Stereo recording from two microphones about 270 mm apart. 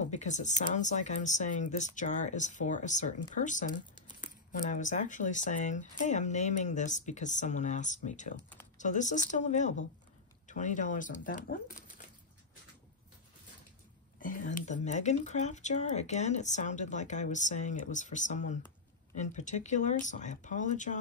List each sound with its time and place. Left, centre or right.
0.0 s speech: left
14.2 s speech: left